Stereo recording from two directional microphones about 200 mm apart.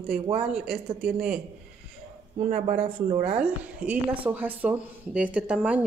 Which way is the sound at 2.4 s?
40° right (ahead or behind).